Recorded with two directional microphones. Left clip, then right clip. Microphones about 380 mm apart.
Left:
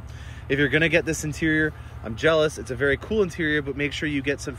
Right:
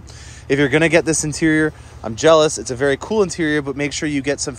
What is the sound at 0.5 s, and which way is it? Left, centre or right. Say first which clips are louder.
Speech: right 6 dB; centre.